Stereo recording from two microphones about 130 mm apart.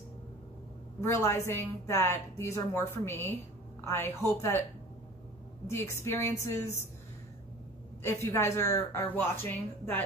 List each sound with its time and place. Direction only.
1.0 s a woman's voice: 20° left (ahead or behind)
5.7 s a woman's voice: 20° left (ahead or behind)
8.0 s a woman's voice: 20° left (ahead or behind)